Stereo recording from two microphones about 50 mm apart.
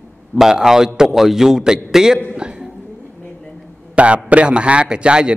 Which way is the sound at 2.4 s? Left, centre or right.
Centre.